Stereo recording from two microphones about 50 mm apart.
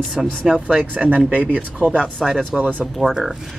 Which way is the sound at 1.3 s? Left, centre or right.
Right.